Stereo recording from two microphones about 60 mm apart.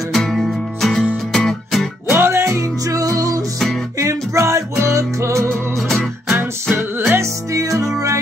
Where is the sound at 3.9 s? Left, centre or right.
Right.